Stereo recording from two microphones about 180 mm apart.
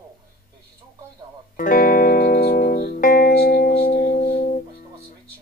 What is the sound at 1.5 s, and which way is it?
Music, 50° left (ahead or behind).